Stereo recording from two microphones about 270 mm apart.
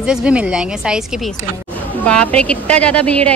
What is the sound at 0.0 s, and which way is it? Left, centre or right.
A woman's voice, centre.